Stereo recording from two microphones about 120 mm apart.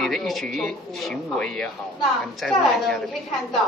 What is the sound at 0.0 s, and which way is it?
Speech, centre (ahead or behind).